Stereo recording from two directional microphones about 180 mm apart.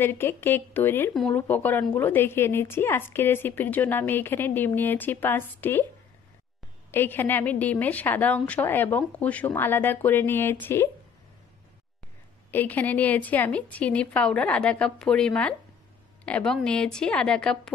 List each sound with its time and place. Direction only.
0.0 s a woman's voice: 10° left (ahead or behind)
6.9 s a woman's voice: 10° left (ahead or behind)
12.4 s a woman's voice: 10° left (ahead or behind)